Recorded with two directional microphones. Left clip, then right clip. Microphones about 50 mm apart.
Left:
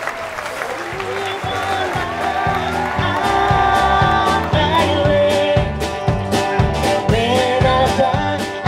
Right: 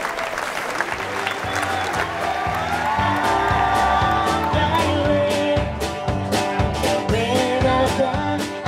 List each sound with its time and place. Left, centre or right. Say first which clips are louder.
3.9 s music: left 4 dB; left
6.3 s music: left 4 dB; centre
7.4 s music: left 4 dB; left
7.8 s music: left 4 dB; centre